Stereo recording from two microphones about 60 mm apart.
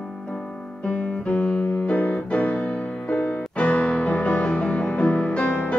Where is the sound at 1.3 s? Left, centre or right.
Left.